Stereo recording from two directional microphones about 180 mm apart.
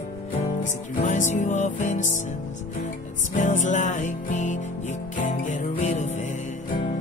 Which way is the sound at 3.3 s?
45° left (ahead or behind).